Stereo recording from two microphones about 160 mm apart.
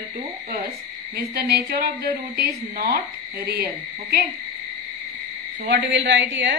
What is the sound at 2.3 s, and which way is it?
A woman's voice, 70° right (ahead or behind).